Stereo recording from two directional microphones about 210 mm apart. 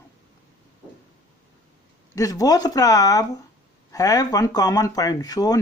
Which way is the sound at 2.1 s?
15° left (ahead or behind).